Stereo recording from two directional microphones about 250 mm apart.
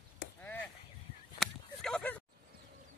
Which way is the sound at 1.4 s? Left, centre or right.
Centre.